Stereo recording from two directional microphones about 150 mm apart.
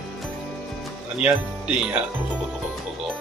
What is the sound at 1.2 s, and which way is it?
Speech, 10° right (ahead or behind).